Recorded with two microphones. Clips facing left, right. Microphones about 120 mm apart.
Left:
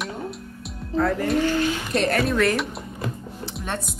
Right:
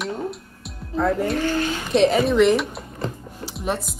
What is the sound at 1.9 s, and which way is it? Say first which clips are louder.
Music: right 7 dB; centre (ahead or behind).